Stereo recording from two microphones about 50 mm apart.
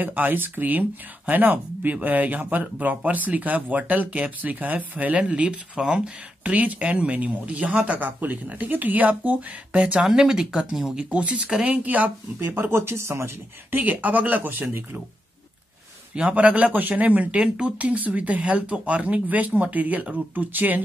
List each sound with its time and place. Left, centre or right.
0.0 s speech: right
10.0 s speech: centre; by 12.1 s right
12.4 s speech: right
13.7 s speech: right
14.4 s speech: right
16.2 s speech: right